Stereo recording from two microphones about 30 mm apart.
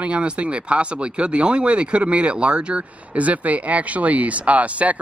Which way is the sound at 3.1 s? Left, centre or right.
Right.